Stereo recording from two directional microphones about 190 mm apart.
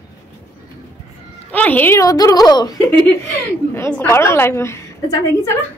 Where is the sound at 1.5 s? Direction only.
10° left (ahead or behind).